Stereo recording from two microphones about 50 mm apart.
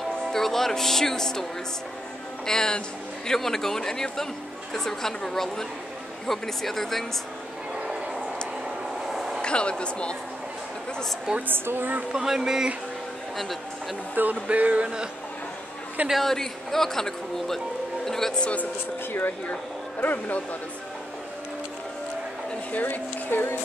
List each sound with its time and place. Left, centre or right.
0.3 s speech: centre
7.8 s a sound: centre
9.0 s vehicle: centre
9.4 s speech: left
11.4 s a woman's voice: right
12.1 s speech: centre
14.3 s music: right
16.1 s speech: centre
18.3 s speech: left
20.0 s speech: left
22.7 s speech: left